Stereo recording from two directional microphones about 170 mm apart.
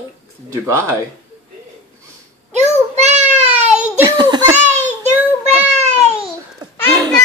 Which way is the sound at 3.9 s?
25° right (ahead or behind).